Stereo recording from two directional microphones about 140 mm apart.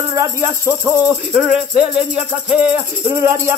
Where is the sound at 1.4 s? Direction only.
5° right (ahead or behind).